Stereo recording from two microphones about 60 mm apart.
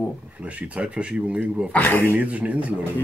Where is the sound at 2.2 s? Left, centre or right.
Right.